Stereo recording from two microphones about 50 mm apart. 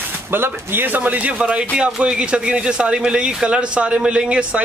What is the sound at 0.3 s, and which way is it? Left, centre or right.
Speech, right.